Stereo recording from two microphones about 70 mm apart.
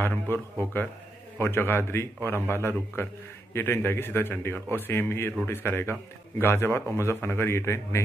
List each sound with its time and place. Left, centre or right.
0.3 s a man's voice: left